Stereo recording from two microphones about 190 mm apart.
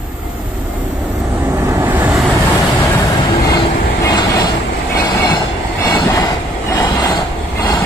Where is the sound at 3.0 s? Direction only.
25° left (ahead or behind).